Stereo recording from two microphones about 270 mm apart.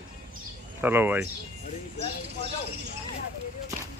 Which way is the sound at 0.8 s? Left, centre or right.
Centre.